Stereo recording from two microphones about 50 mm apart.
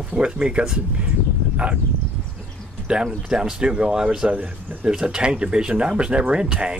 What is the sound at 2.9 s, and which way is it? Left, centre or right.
Speech, centre.